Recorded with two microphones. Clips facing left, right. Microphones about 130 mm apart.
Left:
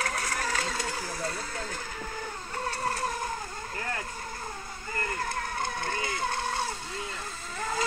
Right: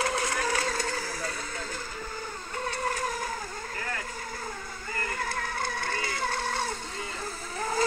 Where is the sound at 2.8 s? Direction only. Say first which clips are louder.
Even; 30° left (ahead or behind).